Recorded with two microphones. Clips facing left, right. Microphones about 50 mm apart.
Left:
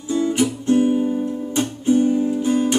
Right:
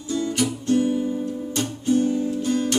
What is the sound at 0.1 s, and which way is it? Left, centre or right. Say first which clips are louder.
Music: left 5 dB; left.